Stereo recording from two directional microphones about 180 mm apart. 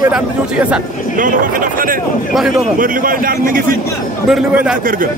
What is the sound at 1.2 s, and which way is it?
Speech, 50° right (ahead or behind).